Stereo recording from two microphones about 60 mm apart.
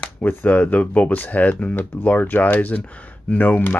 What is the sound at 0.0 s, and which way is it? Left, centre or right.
Speech, left.